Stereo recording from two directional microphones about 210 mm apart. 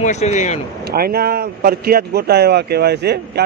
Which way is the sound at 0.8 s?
45° right (ahead or behind).